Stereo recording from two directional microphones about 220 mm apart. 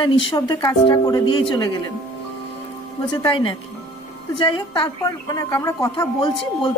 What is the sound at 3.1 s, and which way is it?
Speech, 20° left (ahead or behind).